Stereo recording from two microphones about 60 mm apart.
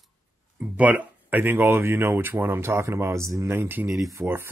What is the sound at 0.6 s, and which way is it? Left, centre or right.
Speech, right.